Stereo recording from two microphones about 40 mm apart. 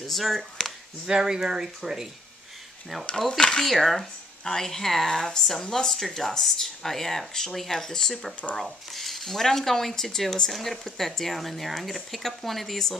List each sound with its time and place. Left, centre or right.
0.0 s speech: centre
1.0 s speech: centre
3.2 s speech: centre
3.6 s speech: centre
8.1 s speech: centre